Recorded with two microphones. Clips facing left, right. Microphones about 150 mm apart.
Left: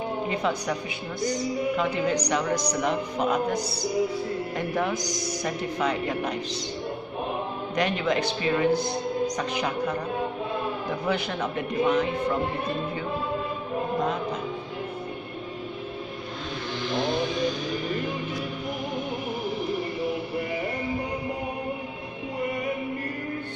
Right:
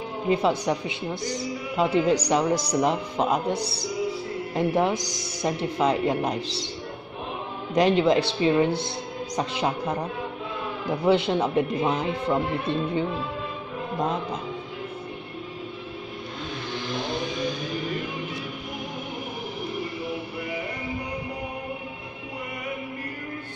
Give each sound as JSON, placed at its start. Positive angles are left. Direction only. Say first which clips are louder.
{"t": 0.3, "sound": "speech", "louder": "right 8 dB", "side_deg": -30}
{"t": 4.9, "sound": "speech", "louder": "left 1 dB", "side_deg": 0}
{"t": 5.4, "sound": "speech", "louder": "right 5 dB", "side_deg": -30}
{"t": 7.7, "sound": "speech", "louder": "right 6 dB", "side_deg": -30}
{"t": 11.1, "sound": "speech", "louder": "right 8 dB", "side_deg": -25}